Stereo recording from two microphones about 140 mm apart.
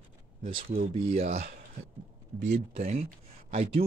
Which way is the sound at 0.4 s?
40° right (ahead or behind).